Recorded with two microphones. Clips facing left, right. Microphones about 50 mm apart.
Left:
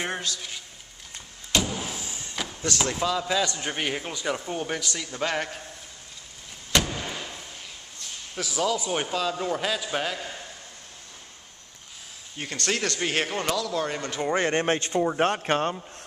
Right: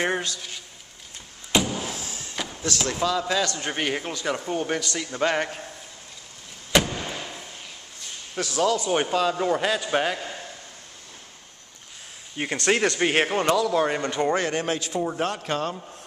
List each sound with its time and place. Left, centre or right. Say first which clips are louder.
0.0 s speech: right 5 dB; centre
1.5 s a sound: right 3 dB; centre
1.8 s vehicle: right 2 dB; centre
2.4 s chop: right 1 dB; centre
2.9 s speech: right 3 dB; centre
6.7 s vehicle: right 3 dB; centre
8.4 s speech: right 3 dB; centre
8.9 s speech: right 5 dB; centre
12.4 s speech: right 6 dB; centre
14.5 s speech: left 2 dB; left